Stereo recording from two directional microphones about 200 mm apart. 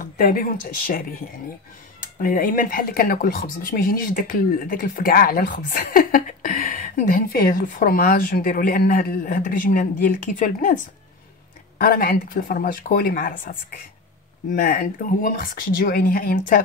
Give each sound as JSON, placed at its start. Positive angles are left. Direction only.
{"t": 0.0, "sound": "speech", "side_deg": 45}
{"t": 11.8, "sound": "speech", "side_deg": 50}